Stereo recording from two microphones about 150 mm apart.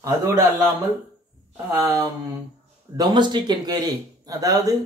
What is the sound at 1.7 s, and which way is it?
A man's voice, 20° right (ahead or behind).